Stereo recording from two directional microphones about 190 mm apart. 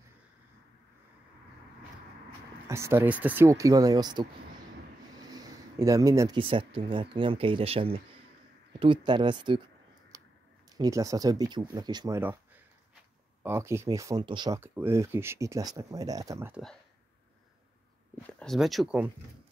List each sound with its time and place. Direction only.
2.7 s speech: 15° right (ahead or behind)
5.3 s speech: 20° right (ahead or behind)
10.1 s a sound: 20° right (ahead or behind)
10.8 s speech: 15° right (ahead or behind)
12.2 s a sound: 10° right (ahead or behind)
13.4 s speech: 15° right (ahead or behind)
14.6 s speech: 10° right (ahead or behind)
18.1 s speech: 5° left (ahead or behind)